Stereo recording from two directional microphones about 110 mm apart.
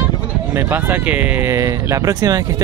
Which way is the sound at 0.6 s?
20° right (ahead or behind).